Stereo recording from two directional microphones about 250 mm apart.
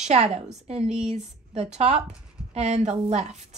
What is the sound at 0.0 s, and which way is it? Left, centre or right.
A woman's voice, right.